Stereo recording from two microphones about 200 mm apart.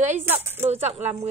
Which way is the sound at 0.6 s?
30° right (ahead or behind).